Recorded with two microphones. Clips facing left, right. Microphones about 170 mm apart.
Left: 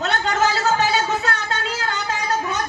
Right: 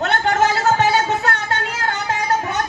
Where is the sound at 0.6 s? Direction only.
20° right (ahead or behind).